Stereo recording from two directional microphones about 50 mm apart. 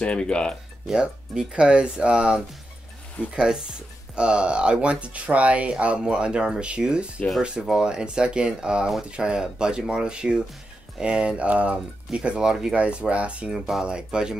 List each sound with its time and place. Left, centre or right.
0.0 s speech: centre
0.8 s speech: centre
12.7 s speech: right
13.5 s speech: centre
13.8 s speech: centre